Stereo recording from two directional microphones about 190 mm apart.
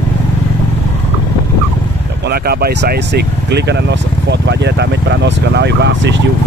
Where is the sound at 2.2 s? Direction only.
55° right (ahead or behind).